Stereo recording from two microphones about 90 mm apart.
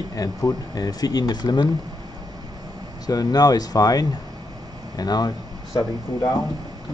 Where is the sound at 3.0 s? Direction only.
45° left (ahead or behind).